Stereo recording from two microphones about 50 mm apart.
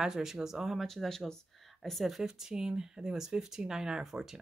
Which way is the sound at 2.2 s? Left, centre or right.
Centre.